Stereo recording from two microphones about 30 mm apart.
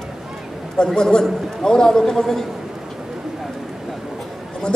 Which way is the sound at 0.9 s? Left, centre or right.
Left.